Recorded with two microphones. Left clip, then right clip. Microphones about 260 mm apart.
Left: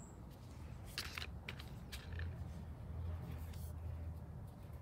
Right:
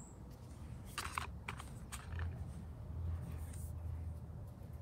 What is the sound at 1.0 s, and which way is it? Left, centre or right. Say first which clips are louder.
Computer keyboard: right 4 dB; centre.